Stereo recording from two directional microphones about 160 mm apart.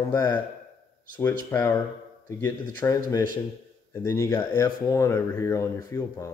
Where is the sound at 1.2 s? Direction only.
15° left (ahead or behind).